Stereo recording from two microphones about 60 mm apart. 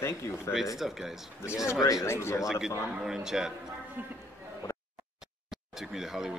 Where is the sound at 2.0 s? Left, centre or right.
Left.